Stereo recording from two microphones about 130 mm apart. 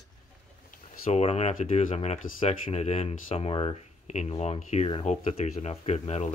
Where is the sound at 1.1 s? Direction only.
55° left (ahead or behind).